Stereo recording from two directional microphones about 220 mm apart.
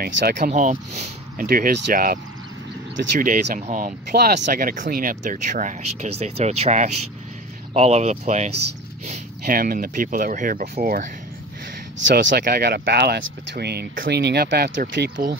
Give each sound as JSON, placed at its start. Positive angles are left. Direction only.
{"t": 0.0, "sound": "speech", "side_deg": -45}
{"t": 3.2, "sound": "speech", "side_deg": -35}
{"t": 12.1, "sound": "speech", "side_deg": -55}